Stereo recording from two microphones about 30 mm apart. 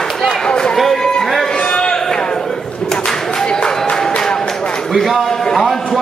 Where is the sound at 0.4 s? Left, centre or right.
Left.